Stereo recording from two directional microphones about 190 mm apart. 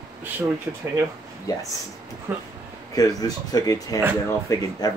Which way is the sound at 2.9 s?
20° left (ahead or behind).